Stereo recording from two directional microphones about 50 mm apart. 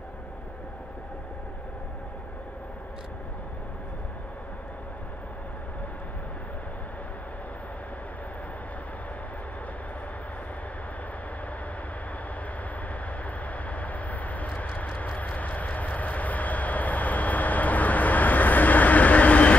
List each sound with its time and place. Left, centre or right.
13.7 s vehicle: left